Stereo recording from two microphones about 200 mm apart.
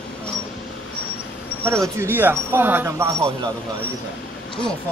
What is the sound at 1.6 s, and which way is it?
Speech, 15° right (ahead or behind).